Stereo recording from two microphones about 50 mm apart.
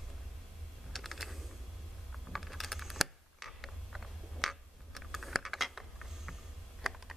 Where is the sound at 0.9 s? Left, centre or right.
Centre.